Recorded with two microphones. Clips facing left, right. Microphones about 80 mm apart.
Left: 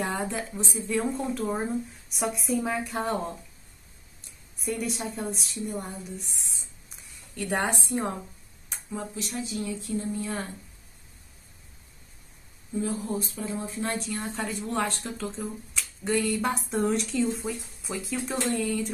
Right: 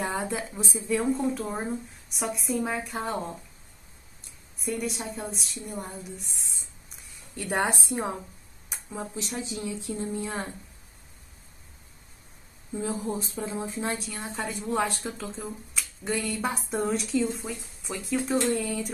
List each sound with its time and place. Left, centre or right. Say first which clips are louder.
0.0 s speech: even; centre
4.6 s a woman's voice: even; centre
8.6 s speech: left 1 dB; centre
12.8 s speech: right 1 dB; right
13.9 s speech: left 2 dB; centre